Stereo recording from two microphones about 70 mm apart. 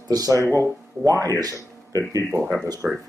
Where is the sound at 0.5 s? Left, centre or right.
Left.